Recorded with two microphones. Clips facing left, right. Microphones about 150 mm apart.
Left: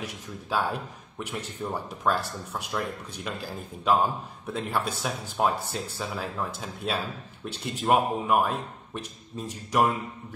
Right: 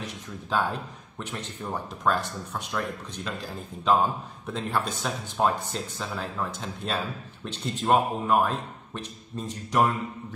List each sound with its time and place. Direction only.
0.0 s speech: 5° left (ahead or behind)